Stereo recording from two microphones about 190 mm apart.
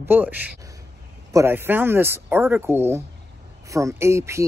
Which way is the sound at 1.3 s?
10° right (ahead or behind).